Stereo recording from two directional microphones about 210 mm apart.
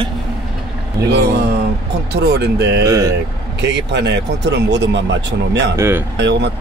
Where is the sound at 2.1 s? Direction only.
50° right (ahead or behind).